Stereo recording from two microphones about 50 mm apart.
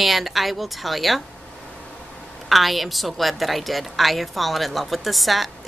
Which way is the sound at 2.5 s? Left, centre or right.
Centre.